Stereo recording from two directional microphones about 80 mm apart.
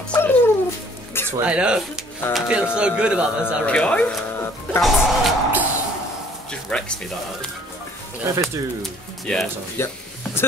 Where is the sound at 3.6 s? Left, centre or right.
Centre.